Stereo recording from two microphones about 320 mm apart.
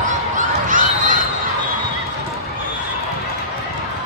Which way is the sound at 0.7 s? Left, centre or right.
Right.